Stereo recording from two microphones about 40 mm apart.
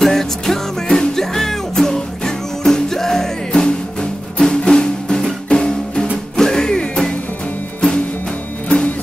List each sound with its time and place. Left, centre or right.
0.0 s music: centre
8.6 s music: left